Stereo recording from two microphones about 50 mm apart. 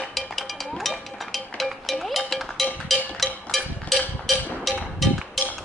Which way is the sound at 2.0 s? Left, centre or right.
Centre.